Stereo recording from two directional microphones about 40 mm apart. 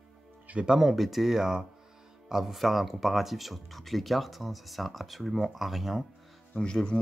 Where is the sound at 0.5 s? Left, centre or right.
Right.